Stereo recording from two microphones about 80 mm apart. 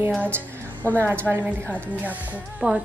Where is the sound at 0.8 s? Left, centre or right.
Left.